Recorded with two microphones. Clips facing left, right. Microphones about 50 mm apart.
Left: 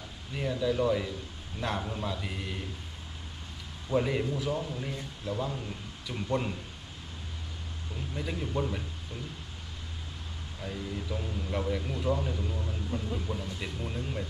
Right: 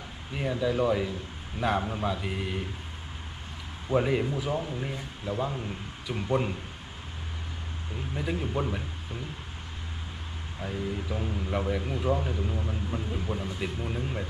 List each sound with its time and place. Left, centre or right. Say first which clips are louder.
0.3 s speech: right 2 dB; centre
3.9 s speech: right 3 dB; centre
8.1 s speech: right 3 dB; centre
10.6 s speech: right 4 dB; centre